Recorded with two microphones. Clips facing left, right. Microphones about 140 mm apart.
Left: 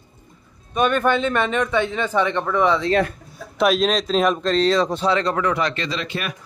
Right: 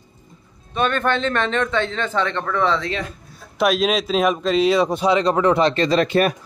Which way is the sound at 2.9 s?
55° left (ahead or behind).